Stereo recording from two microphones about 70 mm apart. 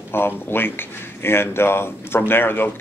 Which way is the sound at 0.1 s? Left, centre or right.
Left.